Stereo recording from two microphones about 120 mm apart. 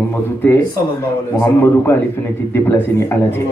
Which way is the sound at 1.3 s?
20° left (ahead or behind).